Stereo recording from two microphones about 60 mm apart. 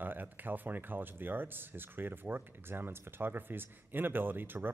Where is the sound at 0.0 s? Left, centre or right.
Right.